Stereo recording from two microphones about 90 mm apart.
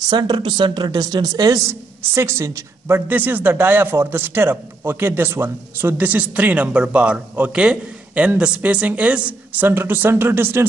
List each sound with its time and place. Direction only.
0.1 s a woman's voice: 55° right (ahead or behind); by 3.0 s 35° right (ahead or behind)
3.1 s a man's voice: 20° right (ahead or behind)